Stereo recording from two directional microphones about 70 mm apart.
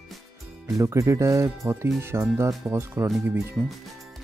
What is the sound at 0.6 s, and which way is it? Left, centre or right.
Speech, right.